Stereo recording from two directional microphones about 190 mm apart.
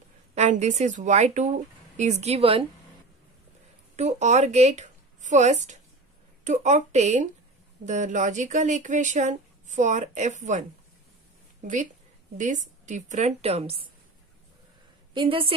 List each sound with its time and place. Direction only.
0.3 s speech: 40° right (ahead or behind)
3.9 s a woman's voice: 35° right (ahead or behind)
11.6 s speech: 40° right (ahead or behind)
15.1 s a woman's voice: 30° right (ahead or behind)